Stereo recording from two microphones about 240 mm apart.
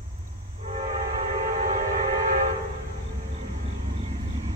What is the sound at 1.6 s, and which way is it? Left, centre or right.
Train, right.